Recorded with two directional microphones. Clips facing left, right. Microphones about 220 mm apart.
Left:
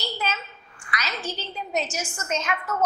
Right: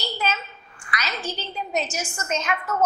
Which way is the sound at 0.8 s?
10° right (ahead or behind).